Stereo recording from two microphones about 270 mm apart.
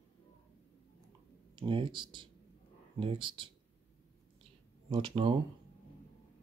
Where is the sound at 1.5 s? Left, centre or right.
Centre.